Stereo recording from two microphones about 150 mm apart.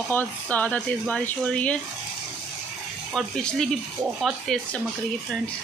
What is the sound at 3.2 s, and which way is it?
Speech, 5° left (ahead or behind).